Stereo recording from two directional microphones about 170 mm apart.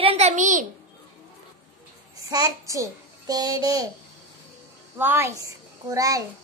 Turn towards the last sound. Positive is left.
turn(degrees=-20)  # may be behind; listen again after turning